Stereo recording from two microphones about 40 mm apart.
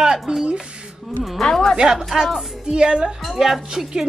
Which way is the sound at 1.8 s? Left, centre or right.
Centre.